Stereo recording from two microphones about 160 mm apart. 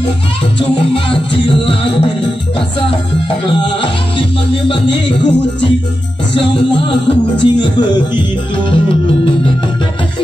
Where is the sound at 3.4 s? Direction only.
30° left (ahead or behind).